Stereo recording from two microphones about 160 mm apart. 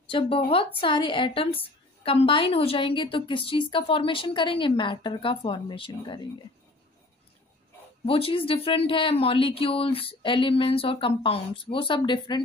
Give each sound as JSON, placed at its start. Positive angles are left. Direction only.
{"t": 0.0, "sound": "speech", "side_deg": 35}
{"t": 8.0, "sound": "speech", "side_deg": 35}